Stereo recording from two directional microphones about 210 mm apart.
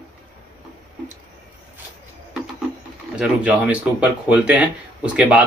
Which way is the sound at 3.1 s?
5° right (ahead or behind).